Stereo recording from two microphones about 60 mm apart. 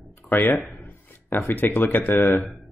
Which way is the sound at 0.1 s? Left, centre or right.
Left.